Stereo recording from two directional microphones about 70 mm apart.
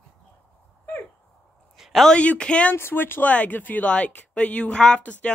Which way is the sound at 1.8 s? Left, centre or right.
Centre.